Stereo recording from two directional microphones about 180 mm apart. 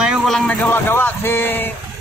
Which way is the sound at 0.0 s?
5° right (ahead or behind).